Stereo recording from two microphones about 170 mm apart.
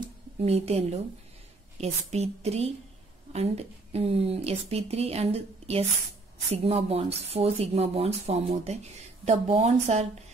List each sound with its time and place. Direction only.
0.4 s speech: 35° right (ahead or behind)